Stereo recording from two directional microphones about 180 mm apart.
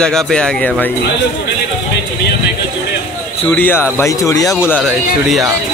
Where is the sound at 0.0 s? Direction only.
5° left (ahead or behind).